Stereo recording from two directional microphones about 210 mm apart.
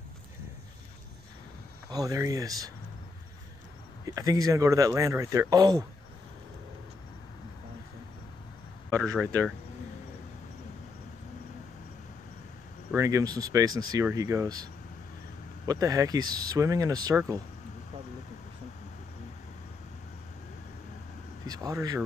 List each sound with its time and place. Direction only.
1.9 s speech: 15° right (ahead or behind)
4.0 s speech: 15° right (ahead or behind)
8.9 s speech: centre (ahead or behind)
12.9 s speech: 15° right (ahead or behind)
21.5 s speech: 15° right (ahead or behind)